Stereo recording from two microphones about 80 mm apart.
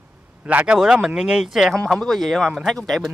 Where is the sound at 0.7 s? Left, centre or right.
Centre.